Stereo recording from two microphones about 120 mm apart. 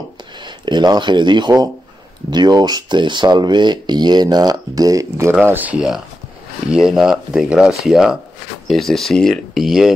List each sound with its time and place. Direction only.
0.4 s speech: 40° right (ahead or behind)
5.4 s speech: 15° right (ahead or behind)